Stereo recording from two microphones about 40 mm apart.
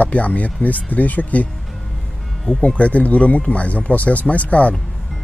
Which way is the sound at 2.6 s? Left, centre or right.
Left.